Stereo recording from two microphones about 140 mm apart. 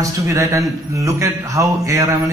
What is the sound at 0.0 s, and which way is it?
Speech, 20° right (ahead or behind).